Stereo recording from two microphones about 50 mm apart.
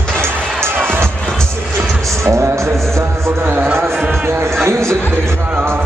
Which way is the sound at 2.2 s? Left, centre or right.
Right.